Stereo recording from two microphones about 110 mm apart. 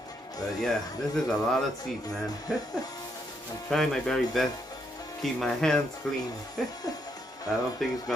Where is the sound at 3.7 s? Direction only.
5° left (ahead or behind).